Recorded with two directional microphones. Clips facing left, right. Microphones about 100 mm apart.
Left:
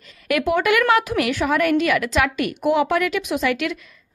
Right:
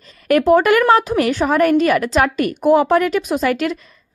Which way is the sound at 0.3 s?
40° right (ahead or behind).